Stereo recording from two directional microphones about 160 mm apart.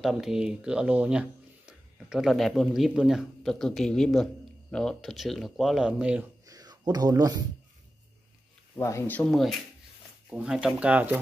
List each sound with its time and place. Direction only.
0.0 s speech: centre (ahead or behind)
6.4 s a sound: 25° right (ahead or behind)
8.7 s speech: 20° left (ahead or behind); by 11.1 s 10° right (ahead or behind)